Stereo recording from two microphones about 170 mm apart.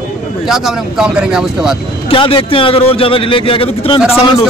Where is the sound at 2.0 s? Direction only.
30° left (ahead or behind).